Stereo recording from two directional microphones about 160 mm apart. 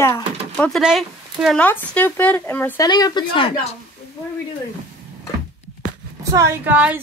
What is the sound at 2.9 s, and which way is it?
Speech, 25° left (ahead or behind).